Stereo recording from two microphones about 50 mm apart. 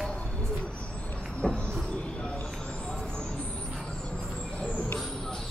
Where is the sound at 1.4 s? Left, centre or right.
Left.